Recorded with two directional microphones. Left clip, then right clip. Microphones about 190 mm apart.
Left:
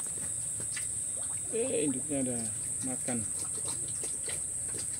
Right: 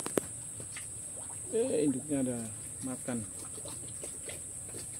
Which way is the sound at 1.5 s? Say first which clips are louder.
Right 2 dB; 30° right (ahead or behind).